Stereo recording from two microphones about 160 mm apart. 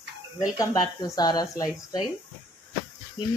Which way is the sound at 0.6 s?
20° left (ahead or behind).